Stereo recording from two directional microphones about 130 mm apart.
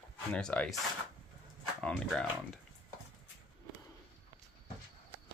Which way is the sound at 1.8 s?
5° left (ahead or behind).